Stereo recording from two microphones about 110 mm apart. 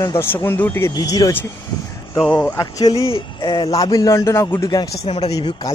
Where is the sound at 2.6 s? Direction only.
35° left (ahead or behind).